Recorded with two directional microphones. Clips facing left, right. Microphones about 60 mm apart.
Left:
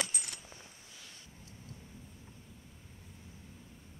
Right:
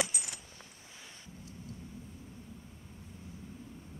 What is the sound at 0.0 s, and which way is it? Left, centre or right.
Coin, centre.